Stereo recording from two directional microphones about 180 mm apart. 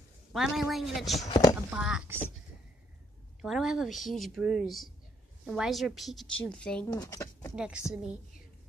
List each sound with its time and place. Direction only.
0.3 s a woman's voice: centre (ahead or behind)
3.3 s a woman's voice: centre (ahead or behind)
6.9 s speech: 20° left (ahead or behind)
7.5 s a woman's voice: 5° right (ahead or behind)